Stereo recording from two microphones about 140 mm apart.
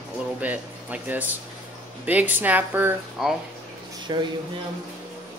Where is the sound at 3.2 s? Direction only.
5° right (ahead or behind).